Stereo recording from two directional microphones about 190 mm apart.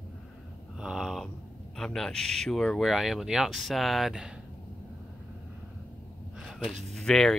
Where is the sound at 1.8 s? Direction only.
Centre (ahead or behind).